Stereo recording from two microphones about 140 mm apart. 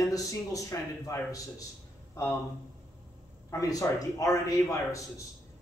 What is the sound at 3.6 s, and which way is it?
Speech, 25° left (ahead or behind).